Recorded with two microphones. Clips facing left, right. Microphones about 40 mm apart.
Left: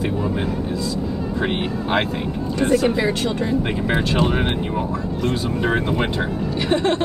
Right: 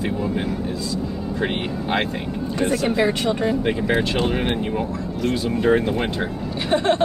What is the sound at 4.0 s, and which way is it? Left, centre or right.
Speech, centre.